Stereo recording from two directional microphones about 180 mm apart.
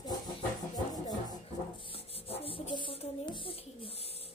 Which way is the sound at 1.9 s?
30° left (ahead or behind).